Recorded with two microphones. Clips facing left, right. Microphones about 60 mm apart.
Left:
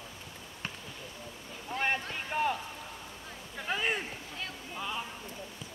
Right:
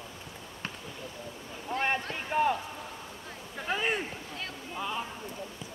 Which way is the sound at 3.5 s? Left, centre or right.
Centre.